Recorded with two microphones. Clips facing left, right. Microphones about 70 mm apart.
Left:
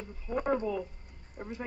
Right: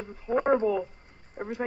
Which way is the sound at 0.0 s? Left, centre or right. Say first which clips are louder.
Right 7 dB; right.